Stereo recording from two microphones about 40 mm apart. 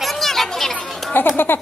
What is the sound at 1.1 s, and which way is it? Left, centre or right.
Speech, left.